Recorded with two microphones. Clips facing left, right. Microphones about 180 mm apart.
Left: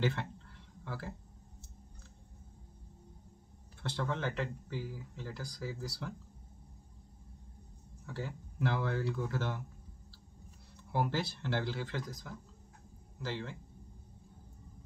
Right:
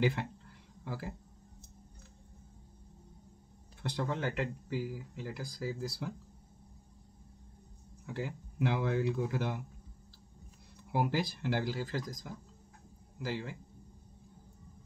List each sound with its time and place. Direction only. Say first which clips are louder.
0.0 s speech: right 3 dB; 15° right (ahead or behind)
3.8 s speech: right 1 dB; 15° right (ahead or behind)
8.1 s speech: right 3 dB; 15° right (ahead or behind)
10.9 s speech: right 2 dB; 15° right (ahead or behind)